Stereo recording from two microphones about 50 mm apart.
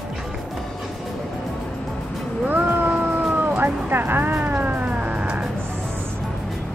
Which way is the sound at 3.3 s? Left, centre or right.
Right.